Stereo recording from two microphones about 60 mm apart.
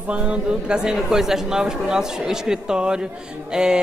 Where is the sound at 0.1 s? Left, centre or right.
Centre.